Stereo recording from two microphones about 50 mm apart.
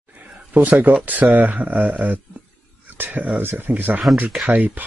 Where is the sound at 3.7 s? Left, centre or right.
Right.